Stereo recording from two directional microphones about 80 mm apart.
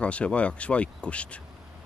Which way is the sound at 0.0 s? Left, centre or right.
Centre.